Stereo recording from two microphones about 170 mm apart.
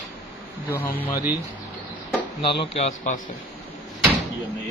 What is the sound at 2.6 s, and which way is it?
Speech, 40° left (ahead or behind).